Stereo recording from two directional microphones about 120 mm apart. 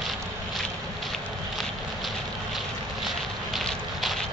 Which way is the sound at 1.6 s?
Centre (ahead or behind).